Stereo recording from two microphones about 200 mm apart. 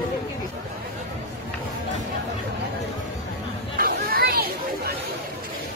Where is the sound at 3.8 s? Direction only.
50° right (ahead or behind).